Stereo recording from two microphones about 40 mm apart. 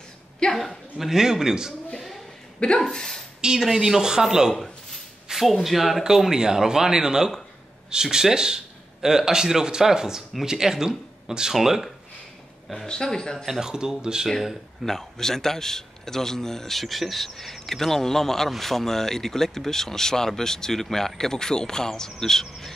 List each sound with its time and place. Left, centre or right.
0.6 s speech: centre
2.0 s a sound: centre
2.6 s speech: left
3.3 s speech: centre
12.7 s a man's voice: centre
13.5 s speech: centre
14.9 s a man's voice: centre